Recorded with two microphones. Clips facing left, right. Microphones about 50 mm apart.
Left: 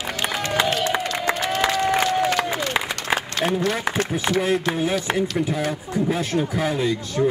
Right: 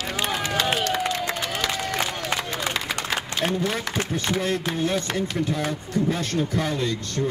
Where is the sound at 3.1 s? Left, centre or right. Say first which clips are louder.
Left 4 dB; centre.